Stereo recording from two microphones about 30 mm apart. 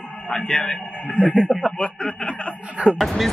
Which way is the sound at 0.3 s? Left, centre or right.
Left.